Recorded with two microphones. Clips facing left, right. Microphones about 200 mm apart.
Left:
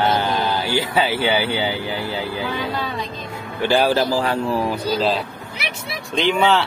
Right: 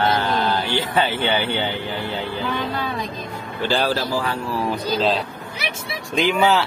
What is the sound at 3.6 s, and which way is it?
Speech, 15° left (ahead or behind).